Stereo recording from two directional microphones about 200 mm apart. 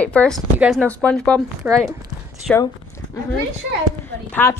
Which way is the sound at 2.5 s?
15° left (ahead or behind).